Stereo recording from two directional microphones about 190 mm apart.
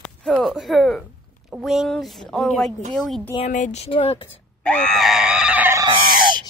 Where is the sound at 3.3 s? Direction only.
40° left (ahead or behind).